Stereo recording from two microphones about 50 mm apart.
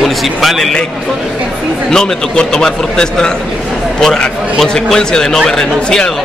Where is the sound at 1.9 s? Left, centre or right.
Centre.